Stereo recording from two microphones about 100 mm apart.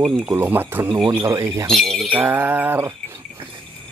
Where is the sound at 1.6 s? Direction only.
5° left (ahead or behind).